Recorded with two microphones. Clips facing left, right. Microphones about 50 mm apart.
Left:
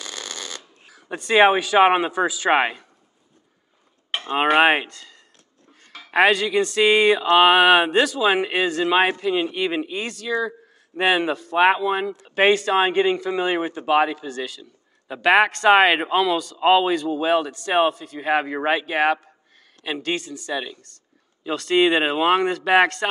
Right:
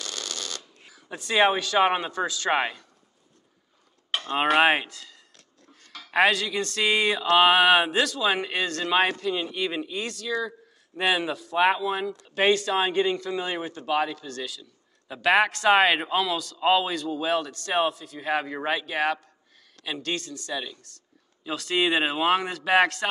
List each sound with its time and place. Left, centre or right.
0.0 s a sound: left
1.3 s speech: left
2.6 s speech: left
4.1 s cutlery: centre
4.8 s speech: centre
5.7 s a sound: centre
6.1 s a man's voice: centre
14.6 s a sound: left
15.2 s a man's voice: centre
21.5 s speech: centre